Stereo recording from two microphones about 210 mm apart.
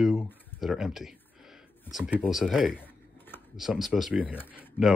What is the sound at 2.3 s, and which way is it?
Speech, centre (ahead or behind).